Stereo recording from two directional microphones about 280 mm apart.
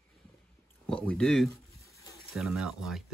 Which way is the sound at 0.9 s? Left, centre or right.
Centre.